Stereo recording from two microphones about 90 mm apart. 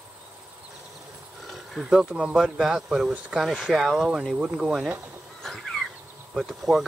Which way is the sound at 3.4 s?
10° left (ahead or behind).